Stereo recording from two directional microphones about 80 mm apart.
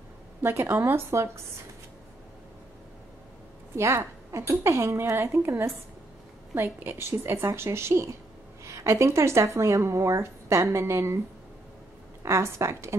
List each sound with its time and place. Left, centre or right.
0.4 s a woman's voice: right
3.7 s a woman's voice: right
12.2 s a woman's voice: right